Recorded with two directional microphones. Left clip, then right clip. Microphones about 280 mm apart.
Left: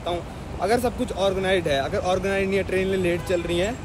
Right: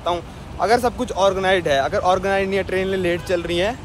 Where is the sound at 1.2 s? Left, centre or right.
Centre.